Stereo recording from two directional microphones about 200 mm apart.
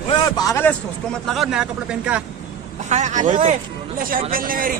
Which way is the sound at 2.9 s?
35° right (ahead or behind).